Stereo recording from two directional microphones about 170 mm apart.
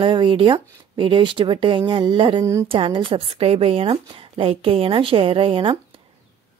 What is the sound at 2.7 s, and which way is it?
A woman's voice, 30° right (ahead or behind).